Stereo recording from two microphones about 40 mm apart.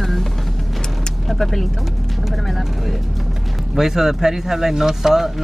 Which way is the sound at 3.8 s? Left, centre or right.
Centre.